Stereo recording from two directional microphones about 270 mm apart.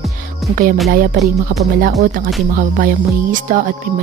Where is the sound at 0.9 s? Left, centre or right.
Right.